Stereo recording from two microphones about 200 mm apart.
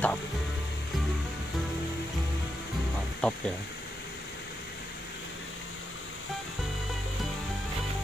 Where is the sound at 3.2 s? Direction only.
5° left (ahead or behind).